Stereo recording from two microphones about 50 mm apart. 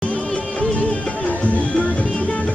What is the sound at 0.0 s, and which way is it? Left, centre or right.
Music, left.